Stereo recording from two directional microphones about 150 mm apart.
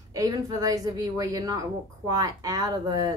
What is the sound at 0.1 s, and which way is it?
Speech, 25° right (ahead or behind).